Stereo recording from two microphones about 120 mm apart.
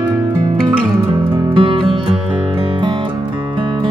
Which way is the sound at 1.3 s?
45° right (ahead or behind).